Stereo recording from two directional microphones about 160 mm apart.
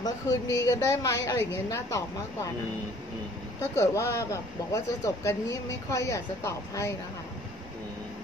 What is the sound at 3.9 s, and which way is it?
A woman's voice, 20° left (ahead or behind).